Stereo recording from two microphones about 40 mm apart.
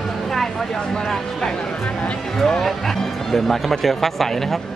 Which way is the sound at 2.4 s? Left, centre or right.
Centre.